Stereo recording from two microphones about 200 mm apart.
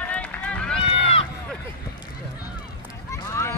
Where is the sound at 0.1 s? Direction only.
5° left (ahead or behind).